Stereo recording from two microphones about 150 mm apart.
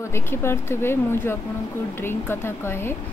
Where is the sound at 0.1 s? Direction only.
15° left (ahead or behind).